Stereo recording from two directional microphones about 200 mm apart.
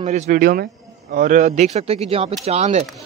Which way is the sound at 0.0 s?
40° right (ahead or behind).